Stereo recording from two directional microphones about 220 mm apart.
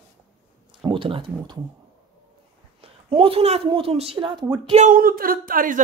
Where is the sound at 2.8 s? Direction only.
25° right (ahead or behind).